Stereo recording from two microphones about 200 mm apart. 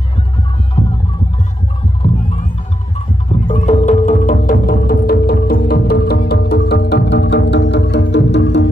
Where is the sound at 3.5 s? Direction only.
35° left (ahead or behind); by 8.7 s 60° left (ahead or behind).